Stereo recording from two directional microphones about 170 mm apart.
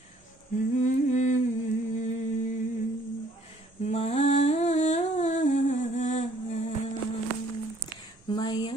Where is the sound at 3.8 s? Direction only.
40° left (ahead or behind).